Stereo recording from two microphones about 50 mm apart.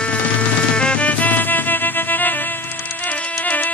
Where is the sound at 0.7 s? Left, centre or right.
Left.